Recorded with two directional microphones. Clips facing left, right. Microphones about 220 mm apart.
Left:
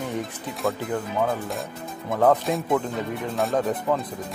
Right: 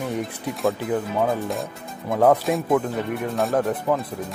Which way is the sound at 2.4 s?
Centre (ahead or behind).